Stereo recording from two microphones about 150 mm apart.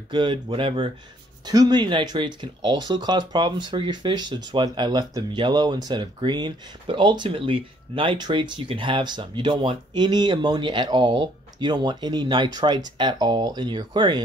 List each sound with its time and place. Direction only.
0.1 s speech: 30° right (ahead or behind)